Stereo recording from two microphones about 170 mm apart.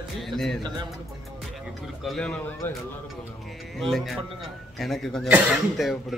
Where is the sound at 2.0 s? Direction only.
5° left (ahead or behind).